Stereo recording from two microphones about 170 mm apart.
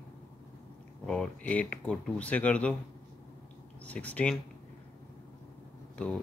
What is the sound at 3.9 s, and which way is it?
Speech, 10° left (ahead or behind).